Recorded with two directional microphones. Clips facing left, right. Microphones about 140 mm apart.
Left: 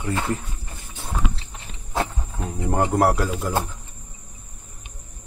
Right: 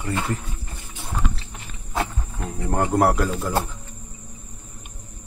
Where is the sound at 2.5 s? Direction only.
Centre (ahead or behind).